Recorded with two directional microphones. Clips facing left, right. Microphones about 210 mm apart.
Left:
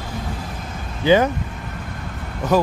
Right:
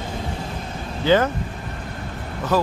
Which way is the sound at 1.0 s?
15° left (ahead or behind).